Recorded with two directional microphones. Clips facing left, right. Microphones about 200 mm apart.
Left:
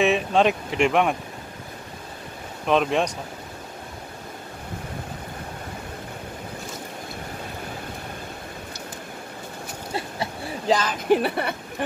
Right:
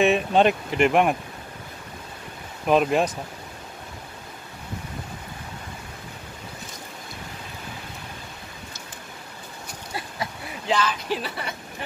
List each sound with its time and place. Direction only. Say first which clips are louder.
0.0 s speech: right 1 dB; centre (ahead or behind)
2.6 s speech: right 1 dB; 5° right (ahead or behind)
9.9 s a sound: left 3 dB; 30° left (ahead or behind)
10.8 s speech: left 6 dB; 50° left (ahead or behind)